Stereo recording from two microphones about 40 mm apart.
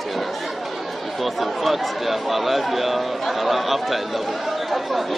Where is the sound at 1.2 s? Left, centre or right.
Centre.